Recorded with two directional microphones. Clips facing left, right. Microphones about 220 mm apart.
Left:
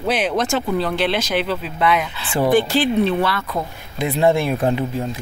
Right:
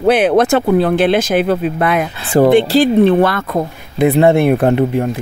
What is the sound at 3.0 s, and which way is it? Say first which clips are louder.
Speech: right 8 dB; 55° right (ahead or behind).